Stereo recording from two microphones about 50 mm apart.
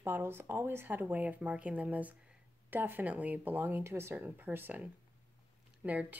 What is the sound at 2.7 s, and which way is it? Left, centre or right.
Speech, right.